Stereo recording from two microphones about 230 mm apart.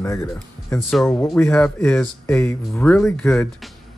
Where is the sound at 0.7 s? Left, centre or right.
Centre.